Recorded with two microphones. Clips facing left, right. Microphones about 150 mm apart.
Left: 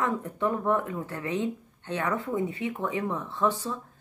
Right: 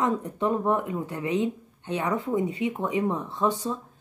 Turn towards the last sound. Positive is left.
turn(degrees=-15)  # may be behind; listen again after turning